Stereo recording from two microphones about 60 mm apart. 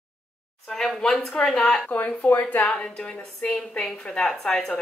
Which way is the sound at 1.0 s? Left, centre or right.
Centre.